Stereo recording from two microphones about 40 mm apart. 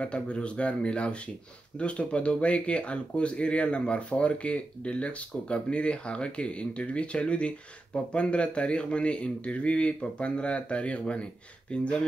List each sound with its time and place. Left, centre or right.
0.0 s speech: left